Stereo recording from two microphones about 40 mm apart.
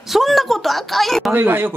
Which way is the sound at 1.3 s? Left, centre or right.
Right.